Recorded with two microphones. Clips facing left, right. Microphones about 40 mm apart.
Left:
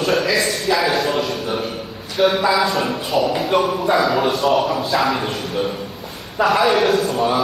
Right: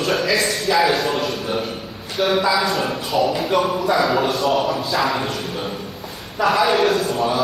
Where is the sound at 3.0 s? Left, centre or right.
Centre.